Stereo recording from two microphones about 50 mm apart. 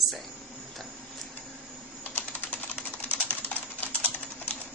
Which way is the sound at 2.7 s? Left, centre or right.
Left.